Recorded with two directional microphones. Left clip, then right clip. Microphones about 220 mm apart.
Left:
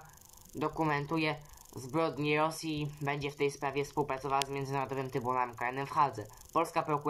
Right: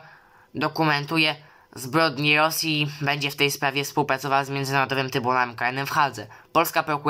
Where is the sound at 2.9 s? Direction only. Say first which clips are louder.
Right 11 dB; 55° right (ahead or behind).